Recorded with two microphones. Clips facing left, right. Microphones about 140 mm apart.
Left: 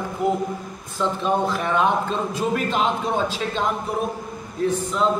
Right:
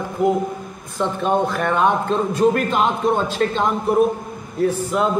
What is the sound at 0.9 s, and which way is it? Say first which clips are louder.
Speech: right 3 dB; 50° right (ahead or behind).